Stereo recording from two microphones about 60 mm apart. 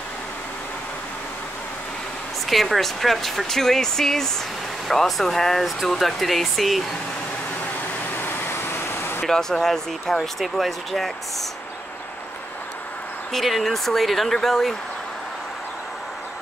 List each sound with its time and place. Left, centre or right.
2.4 s speech: centre
8.2 s vehicle: left
9.3 s speech: centre
13.3 s speech: centre